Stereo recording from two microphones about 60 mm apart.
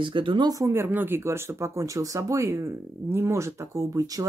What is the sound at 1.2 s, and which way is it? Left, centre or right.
Speech, right.